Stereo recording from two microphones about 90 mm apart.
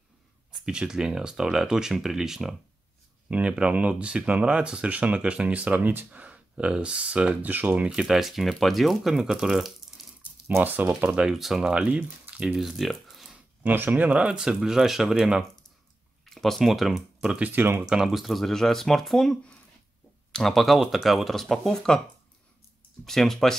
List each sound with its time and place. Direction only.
0.5 s speech: 10° right (ahead or behind)
10.6 s speech: 20° right (ahead or behind)
12.5 s speech: centre (ahead or behind)
13.3 s speech: 20° right (ahead or behind); by 17.4 s 5° right (ahead or behind)
17.4 s speech: 20° right (ahead or behind)
17.8 s speech: 5° right (ahead or behind)
20.3 s speech: centre (ahead or behind)
23.0 s speech: 5° left (ahead or behind)